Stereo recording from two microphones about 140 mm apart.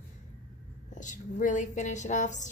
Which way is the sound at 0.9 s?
65° left (ahead or behind).